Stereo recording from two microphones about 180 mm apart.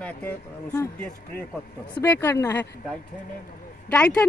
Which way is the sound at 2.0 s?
10° left (ahead or behind).